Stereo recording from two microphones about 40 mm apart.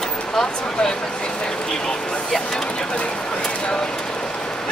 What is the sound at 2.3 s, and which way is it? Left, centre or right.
Speech, centre.